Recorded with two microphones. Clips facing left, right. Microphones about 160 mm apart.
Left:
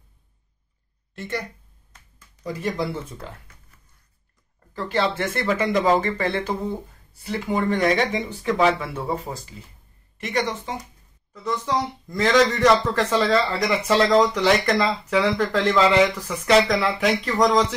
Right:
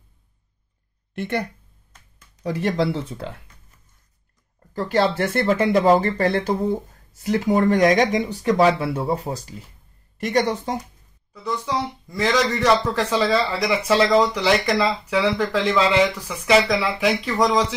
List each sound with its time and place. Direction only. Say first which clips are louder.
1.1 s speech: right 5 dB; 60° right (ahead or behind)
2.4 s speech: right 5 dB; 75° right (ahead or behind)
4.7 s speech: right 4 dB; 40° right (ahead or behind)
10.4 s speech: right 5 dB; 40° right (ahead or behind)
11.4 s speech: left 1 dB; 5° right (ahead or behind)